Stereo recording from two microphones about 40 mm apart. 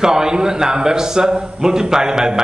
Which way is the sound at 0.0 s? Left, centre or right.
Centre.